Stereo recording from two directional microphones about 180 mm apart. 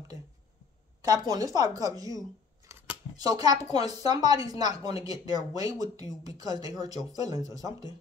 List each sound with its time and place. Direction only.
1.3 s speech: 20° right (ahead or behind)